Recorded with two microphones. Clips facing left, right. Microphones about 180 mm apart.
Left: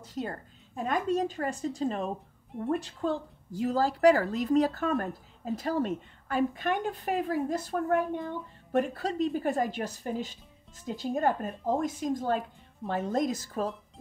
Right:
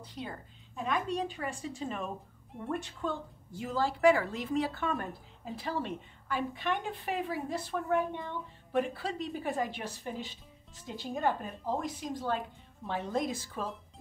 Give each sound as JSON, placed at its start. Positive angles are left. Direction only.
{"t": 0.0, "sound": "a woman's voice", "side_deg": 45}